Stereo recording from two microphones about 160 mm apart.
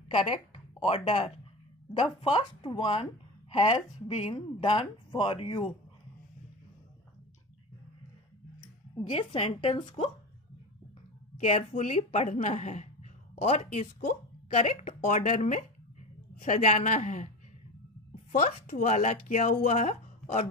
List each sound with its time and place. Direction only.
0.1 s a woman's voice: 35° left (ahead or behind)
8.9 s speech: 35° left (ahead or behind)
11.3 s speech: 45° left (ahead or behind)